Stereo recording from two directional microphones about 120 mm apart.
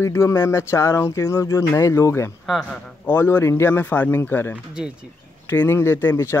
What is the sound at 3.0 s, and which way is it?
Speech, 20° left (ahead or behind).